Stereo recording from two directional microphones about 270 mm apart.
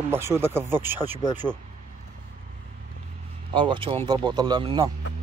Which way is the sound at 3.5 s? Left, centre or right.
Centre.